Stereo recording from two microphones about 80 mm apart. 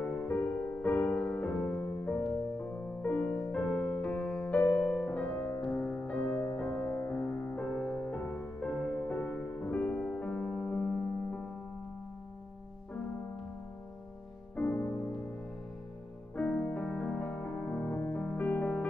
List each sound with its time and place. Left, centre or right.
0.0 s music: centre
14.5 s music: left
16.3 s music: centre